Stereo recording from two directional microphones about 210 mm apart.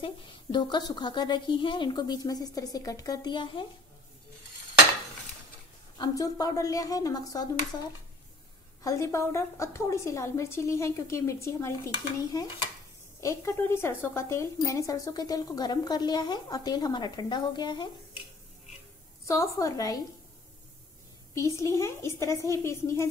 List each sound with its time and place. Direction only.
0.0 s a woman's voice: 20° left (ahead or behind)
5.9 s a woman's voice: 15° left (ahead or behind)
8.8 s a woman's voice: 15° left (ahead or behind)
19.2 s a woman's voice: 15° left (ahead or behind)
21.4 s a woman's voice: 15° left (ahead or behind)